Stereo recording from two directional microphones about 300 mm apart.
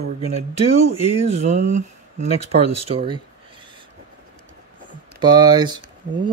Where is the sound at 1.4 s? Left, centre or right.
Right.